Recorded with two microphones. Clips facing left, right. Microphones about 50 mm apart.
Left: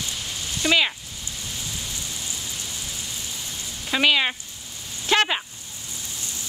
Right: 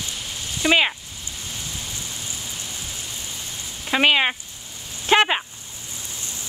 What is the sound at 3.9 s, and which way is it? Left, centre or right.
Sizzle, right.